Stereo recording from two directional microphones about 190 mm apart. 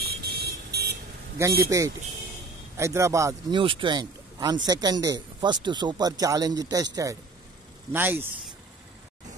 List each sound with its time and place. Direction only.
0.0 s vehicle: 55° right (ahead or behind)
1.4 s a man's voice: 15° right (ahead or behind)
7.9 s a man's voice: 10° right (ahead or behind)